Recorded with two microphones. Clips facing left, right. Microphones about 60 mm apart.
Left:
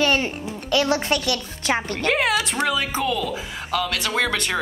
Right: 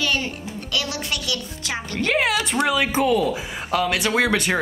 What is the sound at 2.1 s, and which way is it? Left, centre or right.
Speech, centre.